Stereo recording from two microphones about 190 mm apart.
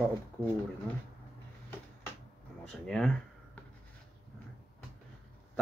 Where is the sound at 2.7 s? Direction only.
5° left (ahead or behind).